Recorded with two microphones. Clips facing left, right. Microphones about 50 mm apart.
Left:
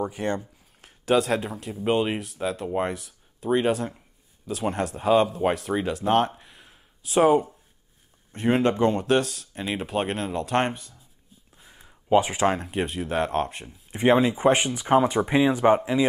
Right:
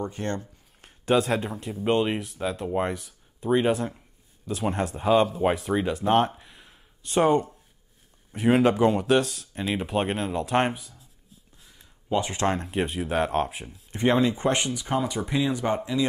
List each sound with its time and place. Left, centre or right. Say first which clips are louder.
0.0 s speech: left 3 dB; centre
0.7 s speech: left 1 dB; centre
11.7 s a sound: left 7 dB; left
12.2 s speech: left 3 dB; centre
12.4 s speech: left 1 dB; centre
13.9 s speech: left 2 dB; centre; by 16.1 s left